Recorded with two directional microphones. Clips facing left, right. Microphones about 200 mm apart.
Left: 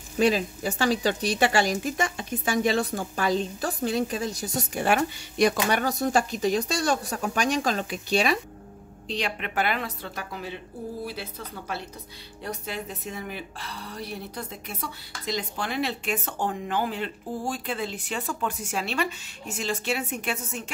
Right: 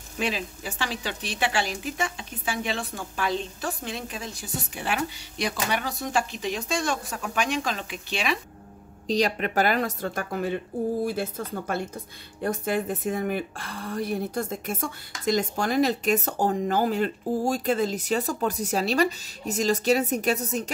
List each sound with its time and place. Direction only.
0.2 s speech: 40° left (ahead or behind)
9.0 s a woman's voice: 40° right (ahead or behind)